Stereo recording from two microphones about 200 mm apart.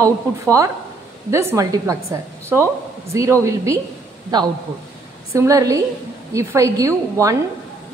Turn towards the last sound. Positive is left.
turn(degrees=-15)  # may be behind; listen again after turning